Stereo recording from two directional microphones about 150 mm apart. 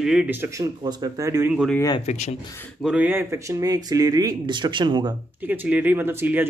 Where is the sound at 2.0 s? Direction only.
50° left (ahead or behind).